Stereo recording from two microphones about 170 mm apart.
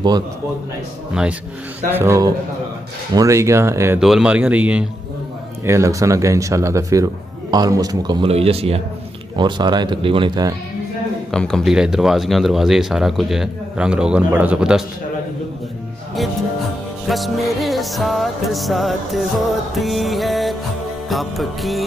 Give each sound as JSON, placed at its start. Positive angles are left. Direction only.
{"t": 1.9, "sound": "speech", "side_deg": -15}
{"t": 4.0, "sound": "speech", "side_deg": -5}
{"t": 5.7, "sound": "a man's voice", "side_deg": -20}
{"t": 9.4, "sound": "speech", "side_deg": -25}
{"t": 11.3, "sound": "speech", "side_deg": 5}
{"t": 17.1, "sound": "speech", "side_deg": 0}